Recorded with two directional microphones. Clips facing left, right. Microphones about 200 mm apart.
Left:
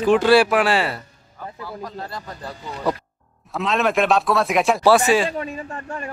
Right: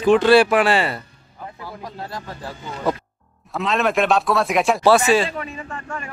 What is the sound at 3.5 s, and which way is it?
Speech, centre (ahead or behind).